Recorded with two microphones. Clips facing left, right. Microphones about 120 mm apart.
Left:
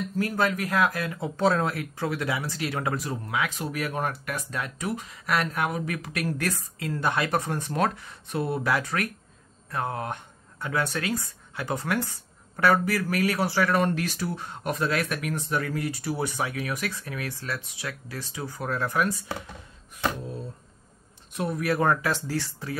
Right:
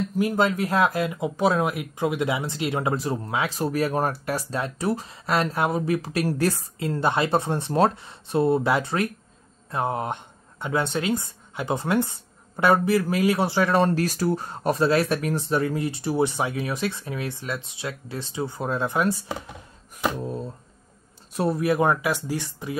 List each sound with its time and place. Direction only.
0.1 s speech: 20° right (ahead or behind)
20.2 s speech: 45° right (ahead or behind)
21.3 s speech: 35° right (ahead or behind)
21.6 s speech: 15° right (ahead or behind)